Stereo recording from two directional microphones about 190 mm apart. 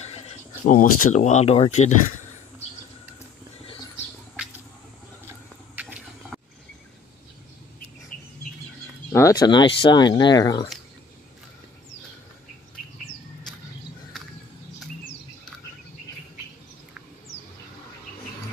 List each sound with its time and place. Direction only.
0.7 s speech: 45° left (ahead or behind)
5.8 s a sound: 5° right (ahead or behind)
9.1 s speech: 20° left (ahead or behind)